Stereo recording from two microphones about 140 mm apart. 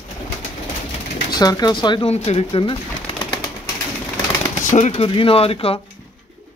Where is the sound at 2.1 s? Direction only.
45° left (ahead or behind).